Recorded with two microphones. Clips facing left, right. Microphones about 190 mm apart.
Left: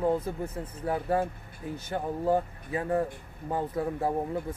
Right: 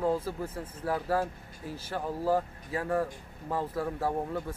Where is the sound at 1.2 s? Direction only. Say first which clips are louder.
Left 2 dB; 5° right (ahead or behind).